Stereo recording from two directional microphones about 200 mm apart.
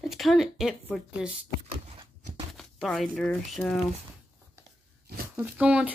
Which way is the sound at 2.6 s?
Centre (ahead or behind).